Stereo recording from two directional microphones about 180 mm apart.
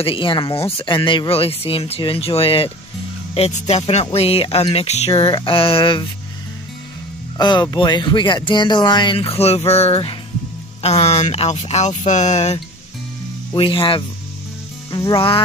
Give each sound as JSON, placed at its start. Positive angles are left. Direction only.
{"t": 0.0, "sound": "speech", "side_deg": 30}
{"t": 7.3, "sound": "speech", "side_deg": 25}
{"t": 13.5, "sound": "speech", "side_deg": 30}